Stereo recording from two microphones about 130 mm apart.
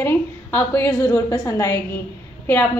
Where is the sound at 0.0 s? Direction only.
15° left (ahead or behind).